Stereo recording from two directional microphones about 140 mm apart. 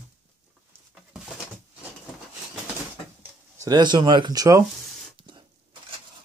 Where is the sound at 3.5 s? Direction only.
30° right (ahead or behind).